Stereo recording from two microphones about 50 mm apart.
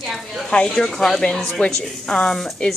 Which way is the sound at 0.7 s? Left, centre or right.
Centre.